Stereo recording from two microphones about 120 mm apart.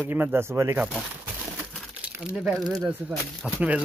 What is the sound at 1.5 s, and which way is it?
Crumpling, 5° right (ahead or behind).